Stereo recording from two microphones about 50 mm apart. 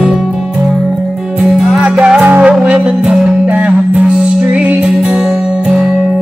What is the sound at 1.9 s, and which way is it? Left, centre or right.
Music, centre.